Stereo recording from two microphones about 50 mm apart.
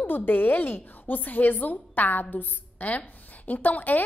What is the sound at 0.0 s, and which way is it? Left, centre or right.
A woman's voice, left.